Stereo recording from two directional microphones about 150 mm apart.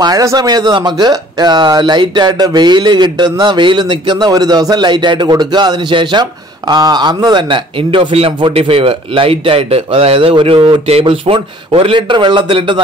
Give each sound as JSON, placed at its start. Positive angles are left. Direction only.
{"t": 0.0, "sound": "a man's voice", "side_deg": -25}